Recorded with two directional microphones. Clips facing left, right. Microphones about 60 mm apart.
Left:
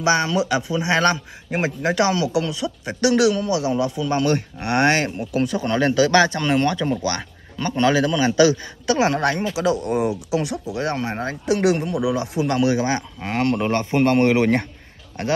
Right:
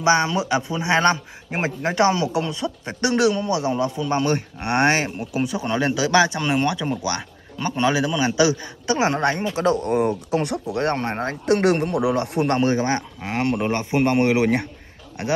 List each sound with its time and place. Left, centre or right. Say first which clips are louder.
0.0 s a man's voice: even; right
9.6 s speech: right 2 dB; right
12.5 s speech: left 3 dB; right
13.2 s speech: left 4 dB; centre